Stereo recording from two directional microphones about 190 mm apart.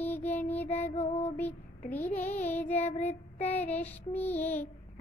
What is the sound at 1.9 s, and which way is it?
Child singing, 10° left (ahead or behind).